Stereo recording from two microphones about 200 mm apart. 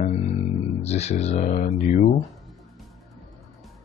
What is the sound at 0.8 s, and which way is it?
Speech, 30° left (ahead or behind).